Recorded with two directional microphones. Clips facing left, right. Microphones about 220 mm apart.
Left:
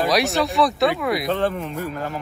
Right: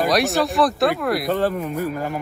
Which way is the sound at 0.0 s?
Centre (ahead or behind).